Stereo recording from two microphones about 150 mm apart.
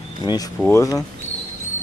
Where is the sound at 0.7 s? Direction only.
20° left (ahead or behind).